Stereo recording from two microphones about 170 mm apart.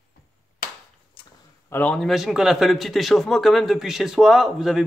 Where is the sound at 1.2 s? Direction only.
25° left (ahead or behind).